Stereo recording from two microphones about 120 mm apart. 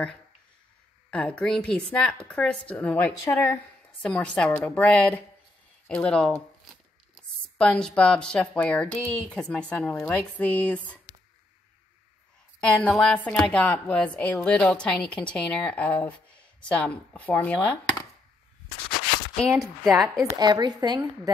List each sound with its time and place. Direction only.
1.1 s a woman's voice: 10° left (ahead or behind)
12.5 s a woman's voice: 10° left (ahead or behind)
19.3 s a woman's voice: centre (ahead or behind)
20.3 s speech: 35° right (ahead or behind)